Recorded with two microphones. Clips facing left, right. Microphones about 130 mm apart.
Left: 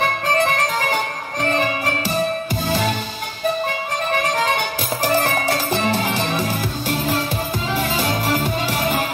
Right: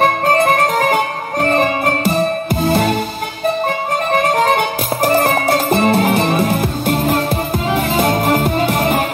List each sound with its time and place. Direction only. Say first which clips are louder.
0.0 s music: right 6 dB; 50° right (ahead or behind)
4.1 s music: right 7 dB; 50° right (ahead or behind)